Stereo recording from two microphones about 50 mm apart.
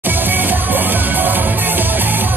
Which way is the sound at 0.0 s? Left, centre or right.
Right.